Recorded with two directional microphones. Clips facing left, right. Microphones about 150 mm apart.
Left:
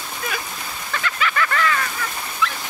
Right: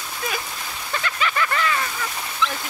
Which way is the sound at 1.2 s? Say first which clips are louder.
Left 2 dB; 20° right (ahead or behind).